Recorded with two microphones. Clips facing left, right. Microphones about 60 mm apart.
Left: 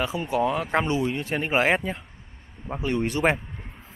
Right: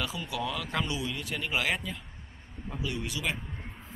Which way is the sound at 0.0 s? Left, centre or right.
Left.